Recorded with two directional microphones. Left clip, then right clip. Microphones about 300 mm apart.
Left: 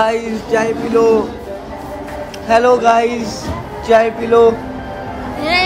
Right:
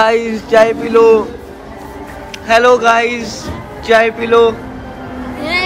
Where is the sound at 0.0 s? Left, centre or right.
Centre.